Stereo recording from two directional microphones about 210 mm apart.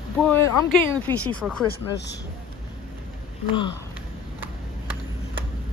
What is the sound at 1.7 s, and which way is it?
Speech, 55° left (ahead or behind).